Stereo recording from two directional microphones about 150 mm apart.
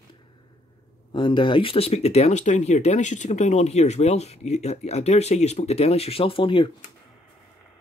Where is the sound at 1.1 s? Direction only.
30° left (ahead or behind).